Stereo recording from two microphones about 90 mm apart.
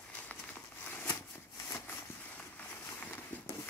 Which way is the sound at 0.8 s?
20° left (ahead or behind).